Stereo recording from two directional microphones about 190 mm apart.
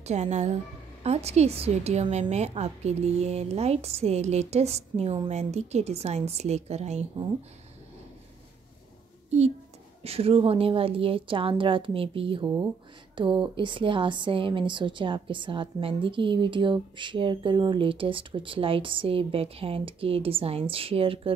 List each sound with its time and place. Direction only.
0.0 s a woman's voice: 35° right (ahead or behind)
10.0 s a woman's voice: 30° right (ahead or behind)